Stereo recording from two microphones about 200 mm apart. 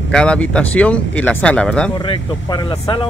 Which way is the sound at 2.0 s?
20° left (ahead or behind).